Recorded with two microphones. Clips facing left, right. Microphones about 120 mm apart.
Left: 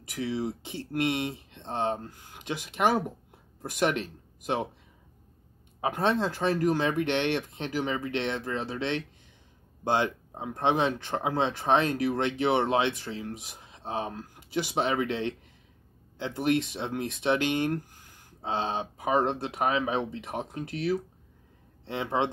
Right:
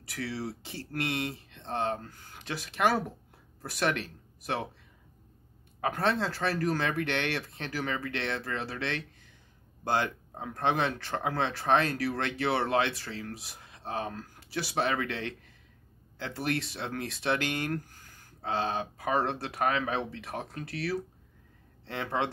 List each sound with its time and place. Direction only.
0.0 s speech: 20° left (ahead or behind)
5.8 s speech: 20° left (ahead or behind)